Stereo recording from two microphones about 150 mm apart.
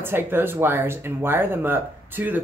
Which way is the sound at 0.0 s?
15° right (ahead or behind).